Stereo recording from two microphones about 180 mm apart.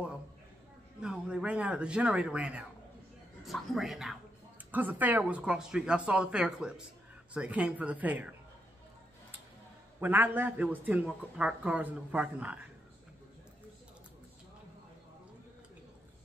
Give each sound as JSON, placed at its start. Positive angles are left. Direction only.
{"t": 1.0, "sound": "a man's voice", "side_deg": -5}
{"t": 9.9, "sound": "a man's voice", "side_deg": -10}